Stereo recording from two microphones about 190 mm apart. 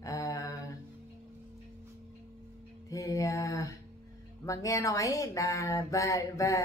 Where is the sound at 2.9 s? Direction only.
15° left (ahead or behind).